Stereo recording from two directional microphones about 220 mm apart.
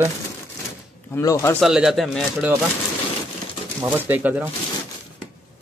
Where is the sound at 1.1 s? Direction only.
15° left (ahead or behind).